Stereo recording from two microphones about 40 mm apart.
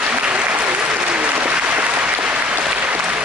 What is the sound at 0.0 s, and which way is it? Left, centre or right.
Applause, right.